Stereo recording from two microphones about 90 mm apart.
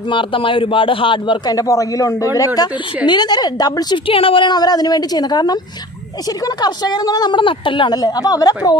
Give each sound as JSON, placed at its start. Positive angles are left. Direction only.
{"t": 0.1, "sound": "a man's voice", "side_deg": 75}
{"t": 1.5, "sound": "a man's voice", "side_deg": 40}
{"t": 4.1, "sound": "a woman's voice", "side_deg": 85}
{"t": 7.3, "sound": "a woman's voice", "side_deg": 70}